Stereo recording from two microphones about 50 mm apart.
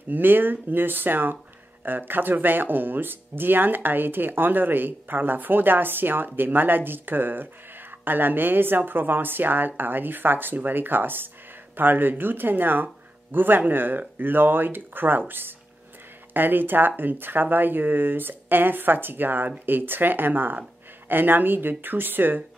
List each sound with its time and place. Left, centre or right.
0.1 s speech: right